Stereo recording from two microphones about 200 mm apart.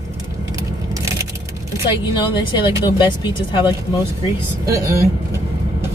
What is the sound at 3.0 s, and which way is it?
Speech, 25° left (ahead or behind).